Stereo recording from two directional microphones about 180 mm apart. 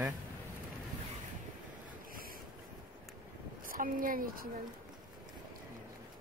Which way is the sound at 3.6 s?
50° right (ahead or behind).